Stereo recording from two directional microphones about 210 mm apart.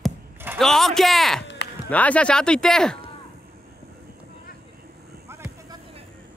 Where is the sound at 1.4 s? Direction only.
55° left (ahead or behind).